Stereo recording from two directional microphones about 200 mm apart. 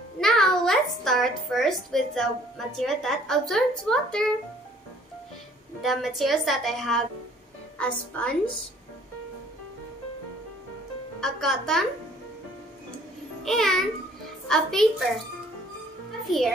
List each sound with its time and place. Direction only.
0.2 s a child's voice: centre (ahead or behind)
5.8 s a woman's voice: centre (ahead or behind)
11.1 s speech: centre (ahead or behind)
13.4 s a child's voice: centre (ahead or behind)
16.3 s a child's voice: centre (ahead or behind)